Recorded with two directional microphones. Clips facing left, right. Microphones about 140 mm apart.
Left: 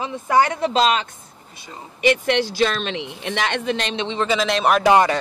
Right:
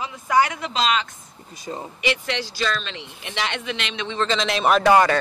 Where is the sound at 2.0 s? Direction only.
50° left (ahead or behind); by 4.2 s 30° left (ahead or behind).